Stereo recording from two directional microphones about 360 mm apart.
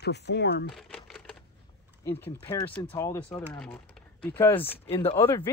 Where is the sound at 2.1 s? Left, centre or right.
Centre.